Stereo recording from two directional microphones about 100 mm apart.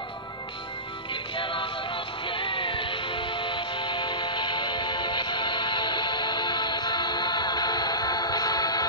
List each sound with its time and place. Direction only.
1.3 s music: 55° left (ahead or behind)